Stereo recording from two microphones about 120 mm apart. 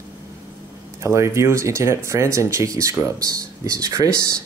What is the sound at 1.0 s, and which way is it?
Speech, 25° right (ahead or behind).